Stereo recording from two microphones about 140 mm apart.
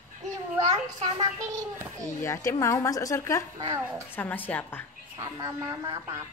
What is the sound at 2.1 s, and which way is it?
Speech, 20° left (ahead or behind).